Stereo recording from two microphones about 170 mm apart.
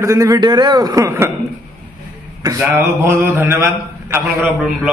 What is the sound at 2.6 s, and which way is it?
A man's voice, 15° right (ahead or behind).